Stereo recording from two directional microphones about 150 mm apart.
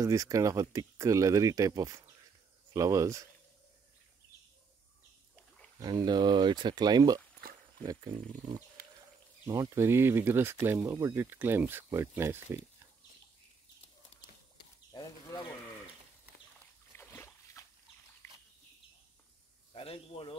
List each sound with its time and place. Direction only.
0.0 s speech: 20° right (ahead or behind)
5.8 s speech: 25° right (ahead or behind)
9.5 s speech: 20° right (ahead or behind)
14.9 s a sound: 25° left (ahead or behind)
16.9 s a sound: 15° left (ahead or behind)
19.7 s snake: 40° left (ahead or behind)